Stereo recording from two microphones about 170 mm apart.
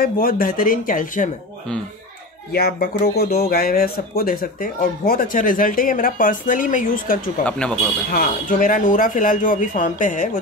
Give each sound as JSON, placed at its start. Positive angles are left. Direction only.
{"t": 0.0, "sound": "speech", "side_deg": 60}
{"t": 2.5, "sound": "speech", "side_deg": 65}
{"t": 7.4, "sound": "speech", "side_deg": 5}
{"t": 8.1, "sound": "speech", "side_deg": 55}